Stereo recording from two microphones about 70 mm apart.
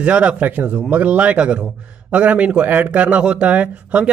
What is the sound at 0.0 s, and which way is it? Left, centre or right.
A man's voice, centre.